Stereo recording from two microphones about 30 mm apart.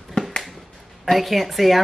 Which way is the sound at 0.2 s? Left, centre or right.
Left.